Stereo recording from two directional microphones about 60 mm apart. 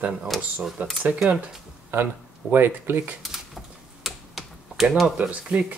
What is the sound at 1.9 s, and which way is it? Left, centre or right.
Speech, right.